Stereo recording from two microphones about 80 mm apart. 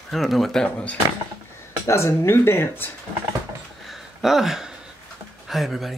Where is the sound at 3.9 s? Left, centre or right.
Centre.